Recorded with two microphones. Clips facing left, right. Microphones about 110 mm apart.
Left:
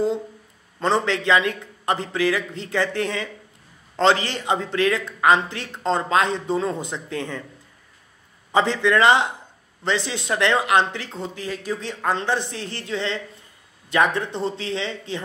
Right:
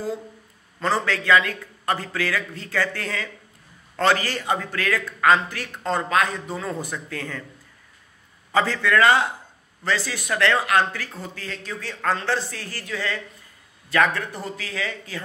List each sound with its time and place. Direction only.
0.7 s a man's voice: 25° left (ahead or behind)
8.5 s a man's voice: 20° left (ahead or behind)